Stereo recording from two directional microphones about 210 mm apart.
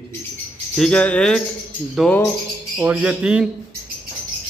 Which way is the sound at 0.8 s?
5° left (ahead or behind).